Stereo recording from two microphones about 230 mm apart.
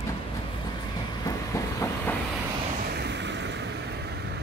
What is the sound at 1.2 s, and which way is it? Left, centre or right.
Train, centre.